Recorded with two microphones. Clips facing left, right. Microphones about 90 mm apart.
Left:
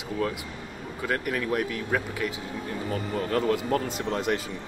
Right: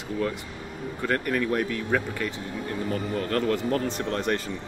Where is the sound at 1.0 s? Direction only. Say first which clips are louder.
Right 2 dB; 5° left (ahead or behind).